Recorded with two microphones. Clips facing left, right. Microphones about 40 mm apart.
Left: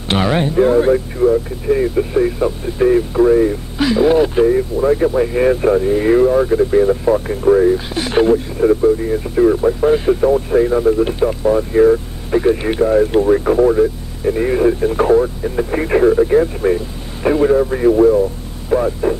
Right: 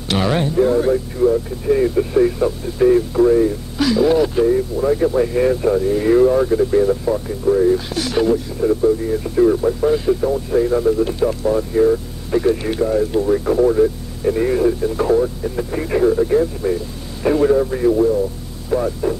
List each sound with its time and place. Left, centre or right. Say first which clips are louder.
0.2 s speech: left 2 dB; centre
1.2 s speech: even; centre
7.2 s speech: left 2 dB; left
14.7 s speech: left 4 dB; left
17.3 s speech: left 2 dB; centre; by 18.2 s left
18.7 s speech: left 3 dB; left